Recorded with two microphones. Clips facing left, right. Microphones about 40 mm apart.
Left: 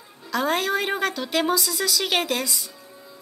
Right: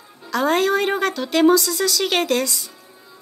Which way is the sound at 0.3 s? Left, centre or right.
Centre.